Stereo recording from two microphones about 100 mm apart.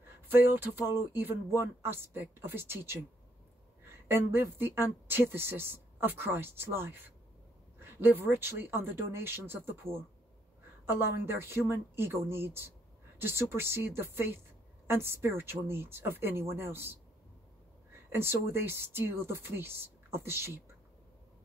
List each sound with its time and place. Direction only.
0.3 s speech: 20° right (ahead or behind)
4.1 s speech: 20° right (ahead or behind)
18.1 s speech: 25° right (ahead or behind)